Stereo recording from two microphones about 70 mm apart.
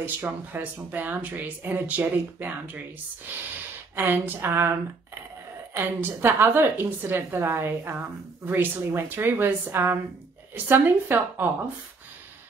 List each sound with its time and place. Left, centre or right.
0.0 s speech: right
3.9 s a woman's voice: right
5.8 s a woman's voice: right